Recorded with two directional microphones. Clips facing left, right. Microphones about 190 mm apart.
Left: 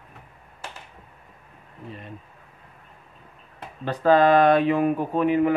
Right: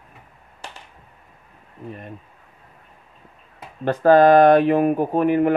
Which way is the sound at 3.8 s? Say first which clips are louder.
Right 5 dB; 50° right (ahead or behind).